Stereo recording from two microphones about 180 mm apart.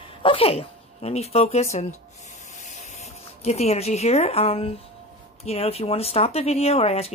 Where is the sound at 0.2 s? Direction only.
30° left (ahead or behind).